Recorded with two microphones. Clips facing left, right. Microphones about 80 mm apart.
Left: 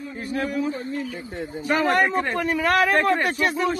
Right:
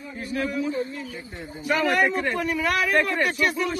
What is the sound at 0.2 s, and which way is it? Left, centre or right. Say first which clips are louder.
A man's voice: left 1 dB; left.